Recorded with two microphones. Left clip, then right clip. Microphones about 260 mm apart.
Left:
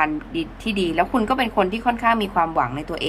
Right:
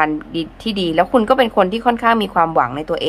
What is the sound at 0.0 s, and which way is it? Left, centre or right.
A woman's voice, centre.